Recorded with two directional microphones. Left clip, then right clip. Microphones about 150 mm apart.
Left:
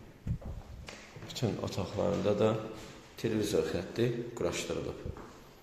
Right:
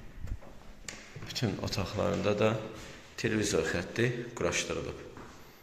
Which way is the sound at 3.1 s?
Centre (ahead or behind).